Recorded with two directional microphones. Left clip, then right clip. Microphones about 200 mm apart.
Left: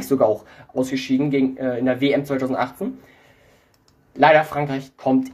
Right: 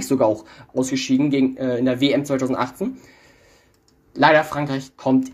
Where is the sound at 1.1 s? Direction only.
35° right (ahead or behind).